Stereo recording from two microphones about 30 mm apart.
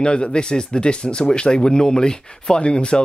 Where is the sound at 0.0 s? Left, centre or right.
Left.